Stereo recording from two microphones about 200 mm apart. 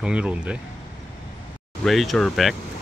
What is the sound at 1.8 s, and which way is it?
Speech, centre (ahead or behind).